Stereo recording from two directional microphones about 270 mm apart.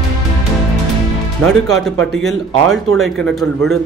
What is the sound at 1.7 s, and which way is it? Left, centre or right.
Speech, centre.